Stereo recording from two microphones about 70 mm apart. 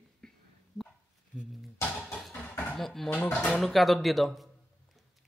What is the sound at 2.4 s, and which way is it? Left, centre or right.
Dishes, left.